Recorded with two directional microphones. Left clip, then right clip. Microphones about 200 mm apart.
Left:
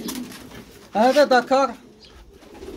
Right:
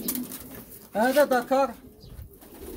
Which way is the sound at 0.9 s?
30° left (ahead or behind).